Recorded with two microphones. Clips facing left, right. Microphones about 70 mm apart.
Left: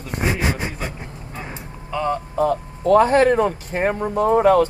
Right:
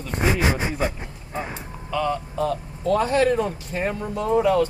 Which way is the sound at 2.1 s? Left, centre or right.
Left.